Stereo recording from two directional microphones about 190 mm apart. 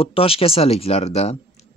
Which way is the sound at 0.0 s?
30° left (ahead or behind).